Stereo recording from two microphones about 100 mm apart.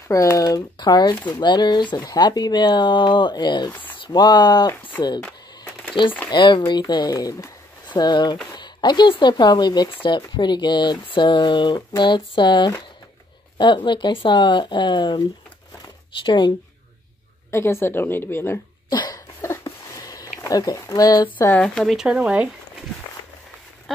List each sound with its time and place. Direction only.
0.1 s speech: 35° left (ahead or behind)
6.3 s speech: 50° left (ahead or behind)
7.2 s speech: 35° left (ahead or behind)
7.9 s speech: 50° left (ahead or behind)
16.3 s speech: 50° left (ahead or behind)
17.5 s a woman's voice: 25° left (ahead or behind)
18.9 s cough: 40° left (ahead or behind)
19.4 s a sound: 30° left (ahead or behind)
20.9 s speech: 40° left (ahead or behind)
21.5 s speech: 10° left (ahead or behind); by 22.5 s 15° right (ahead or behind)